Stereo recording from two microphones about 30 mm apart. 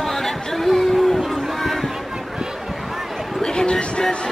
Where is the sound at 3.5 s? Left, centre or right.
Left.